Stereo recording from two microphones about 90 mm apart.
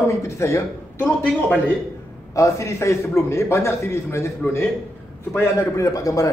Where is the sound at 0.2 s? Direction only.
35° left (ahead or behind).